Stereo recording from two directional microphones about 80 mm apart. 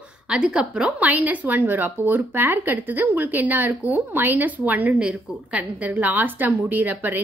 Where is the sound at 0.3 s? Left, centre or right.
Centre.